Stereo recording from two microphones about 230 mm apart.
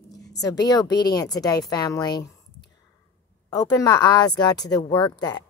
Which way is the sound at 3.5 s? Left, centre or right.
Centre.